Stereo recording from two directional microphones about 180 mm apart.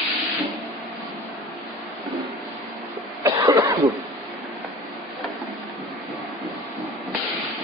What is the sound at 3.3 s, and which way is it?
Cough, 20° right (ahead or behind).